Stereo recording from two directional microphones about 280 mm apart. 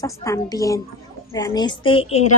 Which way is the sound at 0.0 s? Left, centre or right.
Centre.